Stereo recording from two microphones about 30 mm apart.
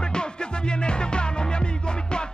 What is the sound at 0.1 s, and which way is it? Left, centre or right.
Music, left.